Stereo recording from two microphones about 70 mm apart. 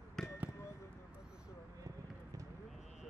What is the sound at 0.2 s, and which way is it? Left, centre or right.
Basketball bounce, centre.